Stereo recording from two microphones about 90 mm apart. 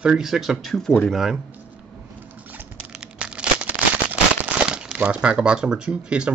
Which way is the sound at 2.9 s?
10° right (ahead or behind).